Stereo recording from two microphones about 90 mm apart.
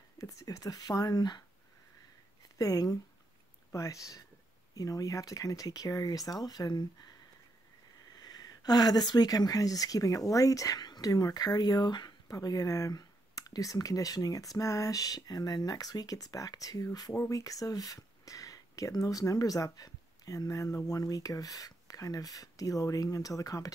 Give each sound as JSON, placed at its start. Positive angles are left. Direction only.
{"t": 0.2, "sound": "speech", "side_deg": 40}
{"t": 2.6, "sound": "speech", "side_deg": 40}
{"t": 8.2, "sound": "speech", "side_deg": 50}